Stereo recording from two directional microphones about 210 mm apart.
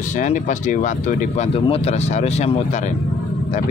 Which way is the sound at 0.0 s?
35° left (ahead or behind).